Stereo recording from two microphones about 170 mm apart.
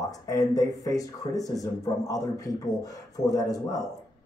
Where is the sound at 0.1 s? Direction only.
20° left (ahead or behind).